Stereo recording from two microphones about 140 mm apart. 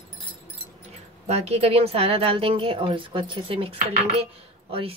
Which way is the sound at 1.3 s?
50° right (ahead or behind).